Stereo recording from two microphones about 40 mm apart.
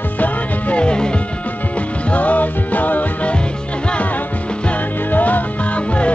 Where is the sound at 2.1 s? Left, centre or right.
Left.